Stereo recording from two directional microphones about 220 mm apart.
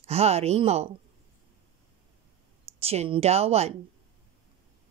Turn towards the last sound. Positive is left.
turn(degrees=-30)  # may be behind; listen again after turning